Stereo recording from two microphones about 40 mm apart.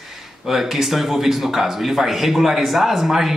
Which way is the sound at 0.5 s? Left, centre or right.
Centre.